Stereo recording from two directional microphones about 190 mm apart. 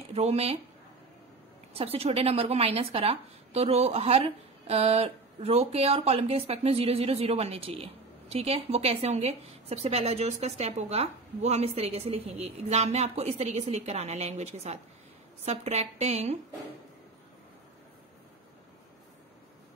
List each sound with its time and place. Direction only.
0.1 s speech: 35° right (ahead or behind)
1.7 s speech: 30° right (ahead or behind)